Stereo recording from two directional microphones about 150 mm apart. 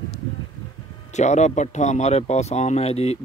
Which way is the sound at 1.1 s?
50° left (ahead or behind).